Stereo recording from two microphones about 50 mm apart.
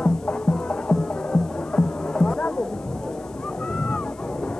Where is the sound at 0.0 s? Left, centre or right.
Centre.